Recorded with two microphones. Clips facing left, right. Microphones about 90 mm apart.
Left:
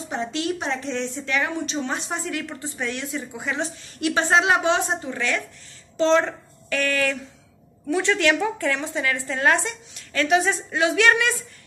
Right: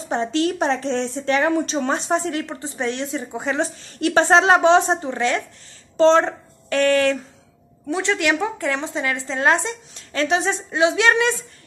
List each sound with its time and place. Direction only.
0.2 s a woman's voice: 35° right (ahead or behind)